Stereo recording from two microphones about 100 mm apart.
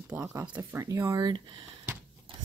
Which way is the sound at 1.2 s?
55° right (ahead or behind).